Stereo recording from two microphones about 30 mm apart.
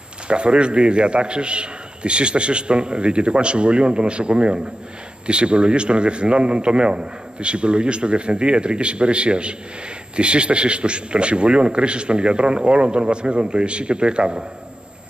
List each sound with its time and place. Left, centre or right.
0.3 s a man's voice: right